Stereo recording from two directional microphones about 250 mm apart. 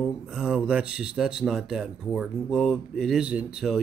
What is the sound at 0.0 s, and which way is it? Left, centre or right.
Speech, centre.